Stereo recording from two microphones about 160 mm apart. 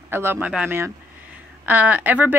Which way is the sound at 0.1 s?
15° right (ahead or behind).